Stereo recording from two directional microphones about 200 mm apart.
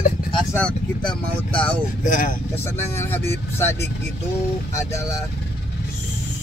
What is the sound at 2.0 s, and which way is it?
Speech, 40° left (ahead or behind).